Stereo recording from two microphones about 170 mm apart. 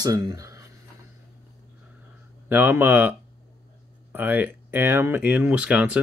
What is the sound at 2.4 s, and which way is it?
Speech, 10° right (ahead or behind).